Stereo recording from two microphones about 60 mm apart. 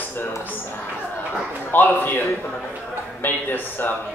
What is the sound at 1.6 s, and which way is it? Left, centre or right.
Speech, left.